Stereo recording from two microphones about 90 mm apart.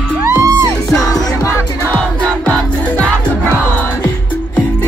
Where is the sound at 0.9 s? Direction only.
40° left (ahead or behind).